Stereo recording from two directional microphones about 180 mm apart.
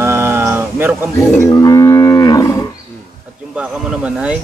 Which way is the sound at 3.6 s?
5° right (ahead or behind).